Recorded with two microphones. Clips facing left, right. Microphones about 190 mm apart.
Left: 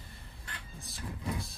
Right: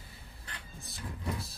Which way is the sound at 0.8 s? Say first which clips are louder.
Even; centre (ahead or behind).